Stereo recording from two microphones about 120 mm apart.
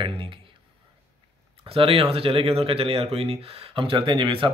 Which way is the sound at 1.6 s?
50° right (ahead or behind).